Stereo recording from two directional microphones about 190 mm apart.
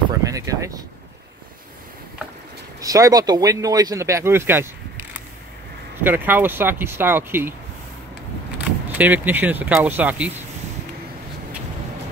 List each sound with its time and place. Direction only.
0.2 s speech: 15° right (ahead or behind)
2.8 s speech: 20° right (ahead or behind)
6.0 s speech: 10° right (ahead or behind)
8.9 s speech: 10° right (ahead or behind)